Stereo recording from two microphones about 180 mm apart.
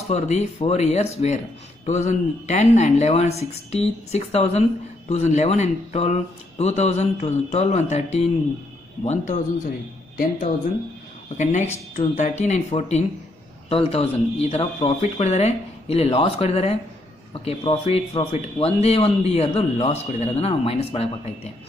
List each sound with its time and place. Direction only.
0.1 s speech: 40° left (ahead or behind)
11.3 s speech: 40° left (ahead or behind)